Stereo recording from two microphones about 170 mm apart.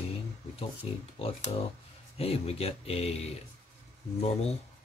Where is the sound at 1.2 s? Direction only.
35° left (ahead or behind).